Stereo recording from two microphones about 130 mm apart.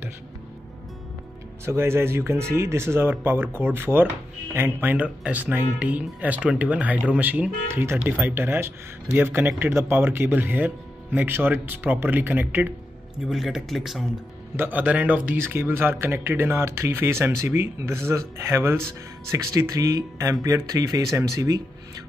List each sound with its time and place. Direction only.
1.7 s speech: 20° right (ahead or behind)
13.3 s speech: centre (ahead or behind)
14.6 s speech: 15° right (ahead or behind)